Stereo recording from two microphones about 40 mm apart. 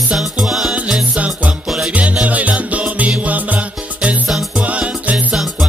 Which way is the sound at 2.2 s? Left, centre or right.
Right.